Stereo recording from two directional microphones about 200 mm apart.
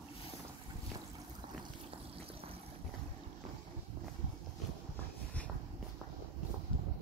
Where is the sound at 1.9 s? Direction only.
30° right (ahead or behind).